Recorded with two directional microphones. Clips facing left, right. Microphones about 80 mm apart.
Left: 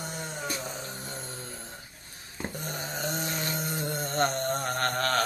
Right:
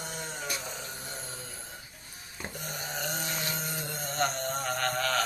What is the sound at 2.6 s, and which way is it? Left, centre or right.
Mantra, left.